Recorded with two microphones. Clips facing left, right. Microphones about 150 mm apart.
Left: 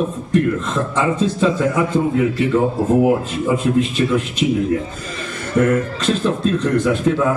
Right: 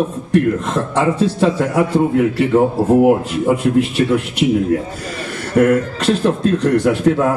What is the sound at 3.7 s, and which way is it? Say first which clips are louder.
Speech: right 2 dB; 65° right (ahead or behind).